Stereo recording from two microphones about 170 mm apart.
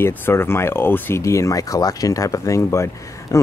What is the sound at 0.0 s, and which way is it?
Speech, 15° left (ahead or behind).